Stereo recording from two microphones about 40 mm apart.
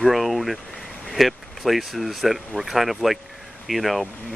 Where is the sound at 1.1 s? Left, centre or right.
Centre.